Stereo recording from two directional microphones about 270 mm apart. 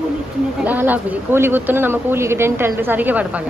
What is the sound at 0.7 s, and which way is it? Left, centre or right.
Speech, centre.